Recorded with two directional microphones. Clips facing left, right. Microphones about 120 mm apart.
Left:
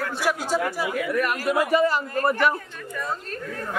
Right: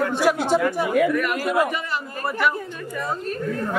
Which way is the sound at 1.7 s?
35° left (ahead or behind).